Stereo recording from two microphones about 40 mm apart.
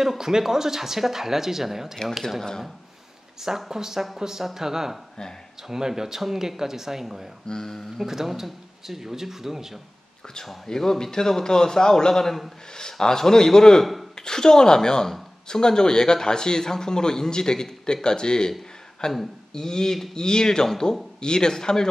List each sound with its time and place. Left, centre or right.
0.0 s speech: centre
3.3 s speech: centre
7.4 s a man's voice: centre
8.0 s speech: centre
10.7 s a man's voice: centre